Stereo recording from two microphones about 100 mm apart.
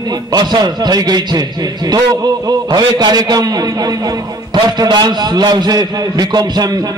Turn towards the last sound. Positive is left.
turn(degrees=-45)  # may be behind; listen again after turning